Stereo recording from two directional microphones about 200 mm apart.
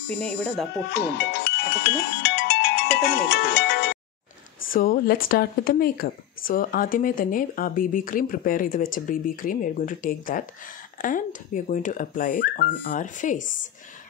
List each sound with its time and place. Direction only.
0.1 s speech: 5° left (ahead or behind)
0.9 s speech: 55° left (ahead or behind)
4.6 s speech: 45° left (ahead or behind)